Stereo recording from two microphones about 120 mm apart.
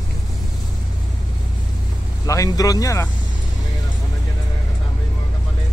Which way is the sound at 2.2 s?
30° left (ahead or behind).